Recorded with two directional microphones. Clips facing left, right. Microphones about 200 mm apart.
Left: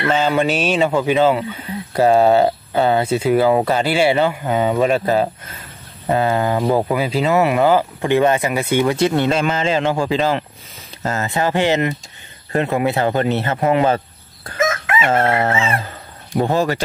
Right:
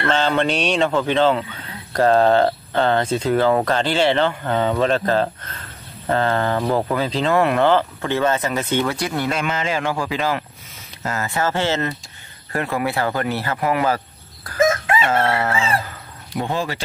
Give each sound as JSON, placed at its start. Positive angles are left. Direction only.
{"t": 0.0, "sound": "speech", "side_deg": 10}
{"t": 8.9, "sound": "speech", "side_deg": 25}
{"t": 14.6, "sound": "chicken", "side_deg": -30}
{"t": 15.0, "sound": "speech", "side_deg": 25}
{"t": 16.3, "sound": "speech", "side_deg": 40}